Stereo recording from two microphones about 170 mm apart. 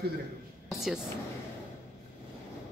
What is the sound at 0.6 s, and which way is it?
Speech, 5° right (ahead or behind).